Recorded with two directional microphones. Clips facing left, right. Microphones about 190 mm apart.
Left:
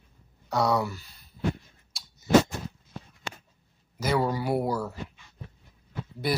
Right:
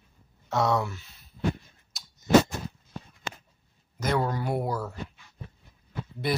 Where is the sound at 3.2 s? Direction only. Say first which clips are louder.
Right 1 dB; 50° right (ahead or behind).